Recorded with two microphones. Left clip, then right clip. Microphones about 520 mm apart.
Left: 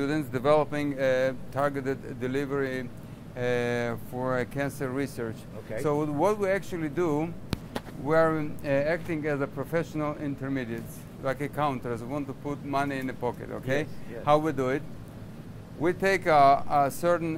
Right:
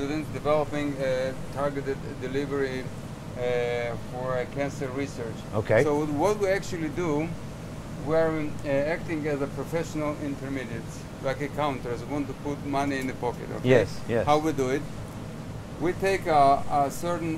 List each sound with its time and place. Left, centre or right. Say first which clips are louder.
0.0 s speech: left 2 dB; left
3.3 s speech: right 1 dB; left
5.9 s speech: right 1 dB; left
15.8 s speech: left 1 dB; left